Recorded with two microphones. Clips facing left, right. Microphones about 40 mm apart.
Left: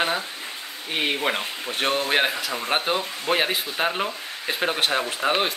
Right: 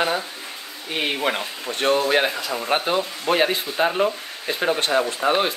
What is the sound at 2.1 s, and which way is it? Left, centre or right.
Speech, centre.